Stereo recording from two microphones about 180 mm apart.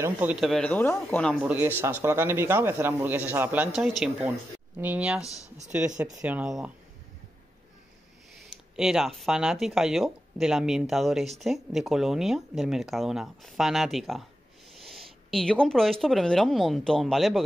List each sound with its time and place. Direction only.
0.0 s speech: 10° right (ahead or behind); by 1.3 s 10° left (ahead or behind)
1.3 s speech: 10° right (ahead or behind)
5.2 s speech: 20° left (ahead or behind)
6.2 s speech: 5° right (ahead or behind)
8.7 s speech: centre (ahead or behind)